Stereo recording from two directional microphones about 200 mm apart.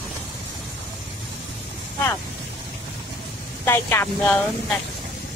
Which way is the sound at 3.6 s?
10° left (ahead or behind).